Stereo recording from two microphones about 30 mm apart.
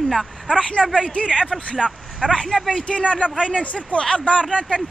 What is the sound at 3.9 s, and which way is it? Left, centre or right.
Speech, left.